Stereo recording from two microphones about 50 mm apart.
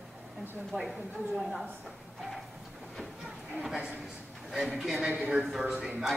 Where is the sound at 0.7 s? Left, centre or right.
Centre.